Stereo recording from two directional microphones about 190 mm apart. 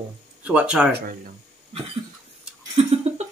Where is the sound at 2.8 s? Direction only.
30° right (ahead or behind).